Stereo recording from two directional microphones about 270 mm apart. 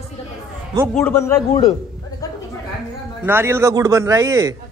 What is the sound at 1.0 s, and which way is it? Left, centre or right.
Speech, centre.